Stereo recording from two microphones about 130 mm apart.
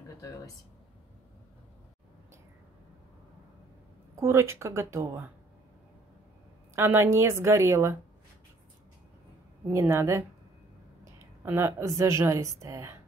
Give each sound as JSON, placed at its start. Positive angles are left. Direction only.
{"t": 4.2, "sound": "a woman's voice", "side_deg": -20}
{"t": 6.7, "sound": "a woman's voice", "side_deg": -20}
{"t": 9.7, "sound": "a woman's voice", "side_deg": -20}
{"t": 11.4, "sound": "a woman's voice", "side_deg": -20}